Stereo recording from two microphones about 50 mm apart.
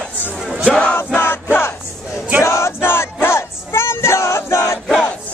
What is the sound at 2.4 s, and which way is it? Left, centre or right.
Male singing, left.